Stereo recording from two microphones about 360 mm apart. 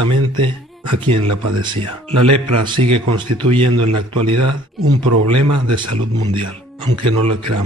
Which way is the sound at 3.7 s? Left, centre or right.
Right.